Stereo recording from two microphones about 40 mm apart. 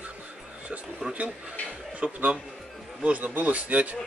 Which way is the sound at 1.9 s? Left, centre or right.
Right.